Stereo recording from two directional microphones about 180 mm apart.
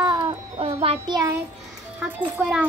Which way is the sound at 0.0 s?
25° right (ahead or behind).